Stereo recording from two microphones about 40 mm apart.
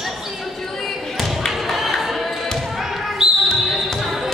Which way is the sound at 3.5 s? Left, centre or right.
Centre.